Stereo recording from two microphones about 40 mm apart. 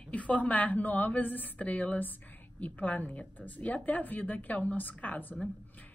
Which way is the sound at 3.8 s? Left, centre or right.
Left.